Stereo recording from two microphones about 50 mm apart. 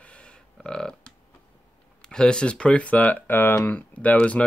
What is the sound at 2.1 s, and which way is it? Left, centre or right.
Speech, centre.